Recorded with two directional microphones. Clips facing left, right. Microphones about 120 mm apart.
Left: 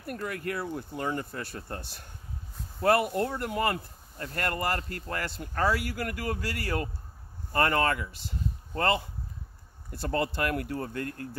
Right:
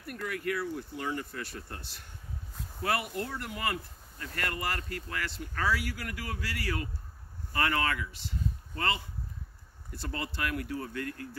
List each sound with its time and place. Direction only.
0.0 s speech: 40° left (ahead or behind)